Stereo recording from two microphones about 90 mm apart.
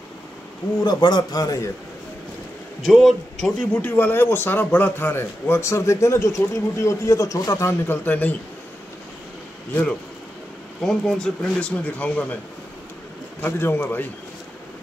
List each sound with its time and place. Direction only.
0.8 s a man's voice: 50° left (ahead or behind)
2.8 s a man's voice: centre (ahead or behind)
3.8 s a man's voice: 20° left (ahead or behind); by 7.7 s 35° left (ahead or behind)
7.8 s speech: 20° left (ahead or behind)
10.8 s speech: 5° left (ahead or behind)
13.4 s speech: 25° left (ahead or behind)